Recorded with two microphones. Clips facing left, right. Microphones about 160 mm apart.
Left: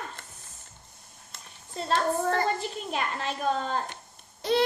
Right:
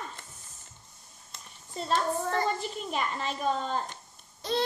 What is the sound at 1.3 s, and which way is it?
A child's voice, 65° left (ahead or behind).